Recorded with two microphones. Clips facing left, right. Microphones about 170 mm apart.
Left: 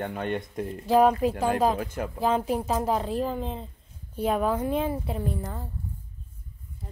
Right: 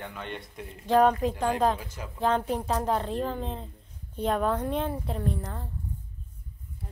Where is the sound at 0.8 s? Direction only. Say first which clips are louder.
Left 1 dB; 10° left (ahead or behind).